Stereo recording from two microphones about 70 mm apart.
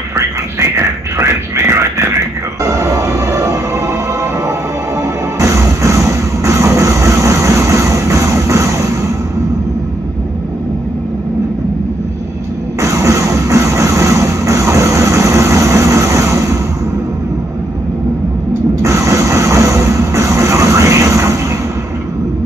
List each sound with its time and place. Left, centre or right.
0.1 s a sound: right
2.6 s music: right
5.4 s music: right
12.8 s music: right
18.8 s music: right